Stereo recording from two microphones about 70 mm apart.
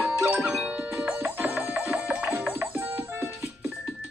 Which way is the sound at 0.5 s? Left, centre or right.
Centre.